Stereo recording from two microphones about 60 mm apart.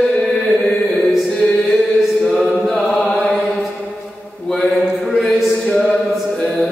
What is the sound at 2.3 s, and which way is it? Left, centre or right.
Chant, centre.